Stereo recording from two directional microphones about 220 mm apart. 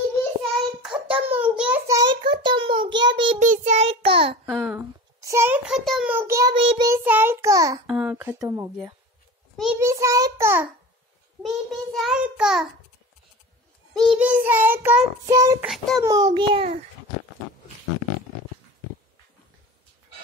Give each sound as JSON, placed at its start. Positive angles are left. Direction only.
{"t": 0.8, "sound": "child singing", "side_deg": -5}
{"t": 3.3, "sound": "child singing", "side_deg": -35}
{"t": 4.5, "sound": "a sound", "side_deg": 0}
{"t": 5.2, "sound": "child singing", "side_deg": -10}
{"t": 6.9, "sound": "child singing", "side_deg": -10}
{"t": 7.8, "sound": "a sound", "side_deg": -5}
{"t": 9.6, "sound": "a child's voice", "side_deg": -10}
{"t": 11.4, "sound": "child singing", "side_deg": 0}
{"t": 13.9, "sound": "child singing", "side_deg": 0}
{"t": 15.6, "sound": "child singing", "side_deg": 0}
{"t": 16.0, "sound": "a child's voice", "side_deg": -15}